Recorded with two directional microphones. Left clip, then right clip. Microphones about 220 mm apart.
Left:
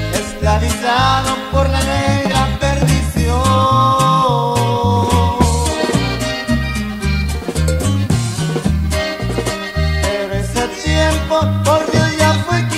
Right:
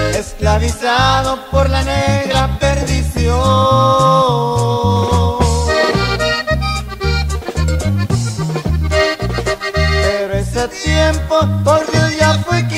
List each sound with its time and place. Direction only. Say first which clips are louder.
0.5 s music: right 1 dB; 20° left (ahead or behind)
10.6 s music: right 1 dB; 20° left (ahead or behind)